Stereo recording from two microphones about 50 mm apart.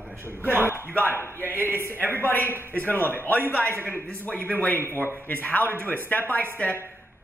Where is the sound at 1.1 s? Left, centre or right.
Left.